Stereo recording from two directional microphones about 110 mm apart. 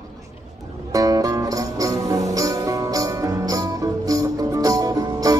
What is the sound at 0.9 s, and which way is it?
Music, 30° right (ahead or behind).